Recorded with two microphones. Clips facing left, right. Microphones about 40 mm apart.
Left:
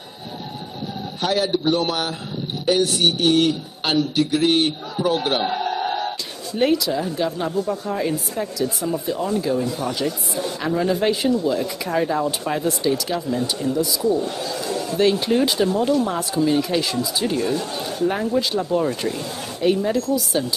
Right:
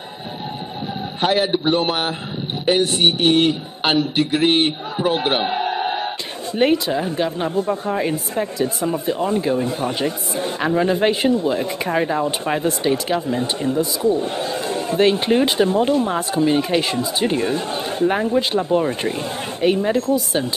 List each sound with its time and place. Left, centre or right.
1.2 s a man's voice: right